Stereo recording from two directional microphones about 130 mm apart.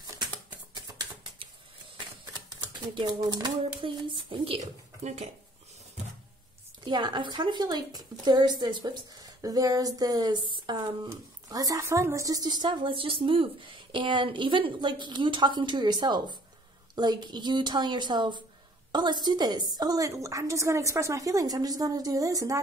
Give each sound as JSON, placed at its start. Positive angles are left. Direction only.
{"t": 0.0, "sound": "a sound", "side_deg": -30}
{"t": 2.8, "sound": "speech", "side_deg": -40}
{"t": 4.6, "sound": "speech", "side_deg": -65}
{"t": 6.8, "sound": "speech", "side_deg": -35}
{"t": 11.1, "sound": "a woman's voice", "side_deg": -25}